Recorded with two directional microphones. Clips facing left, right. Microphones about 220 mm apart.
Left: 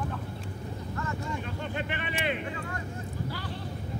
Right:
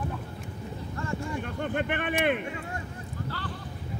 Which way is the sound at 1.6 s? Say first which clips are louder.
Right 5 dB; 55° right (ahead or behind).